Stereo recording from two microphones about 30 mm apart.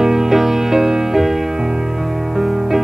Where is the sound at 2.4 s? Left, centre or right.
Centre.